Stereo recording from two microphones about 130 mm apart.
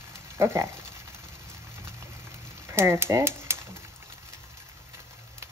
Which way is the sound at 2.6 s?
20° right (ahead or behind).